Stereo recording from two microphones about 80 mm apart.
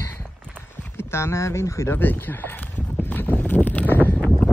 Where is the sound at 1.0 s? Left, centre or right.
Left.